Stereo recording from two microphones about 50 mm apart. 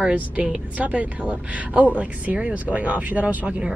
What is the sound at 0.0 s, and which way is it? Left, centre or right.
Speech, right.